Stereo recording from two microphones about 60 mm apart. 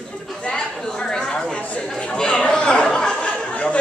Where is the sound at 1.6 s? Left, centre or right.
Left.